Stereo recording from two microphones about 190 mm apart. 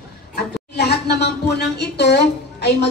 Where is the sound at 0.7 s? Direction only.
60° left (ahead or behind).